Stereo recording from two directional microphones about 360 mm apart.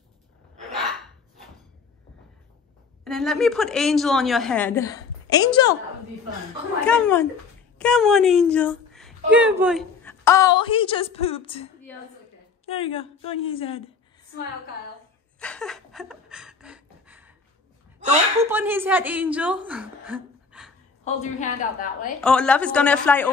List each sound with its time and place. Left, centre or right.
0.6 s hiccup: centre
3.0 s a woman's voice: centre
6.9 s a woman's voice: centre
15.3 s a sound: centre
18.5 s a woman's voice: centre
21.0 s a woman's voice: centre
22.2 s a woman's voice: centre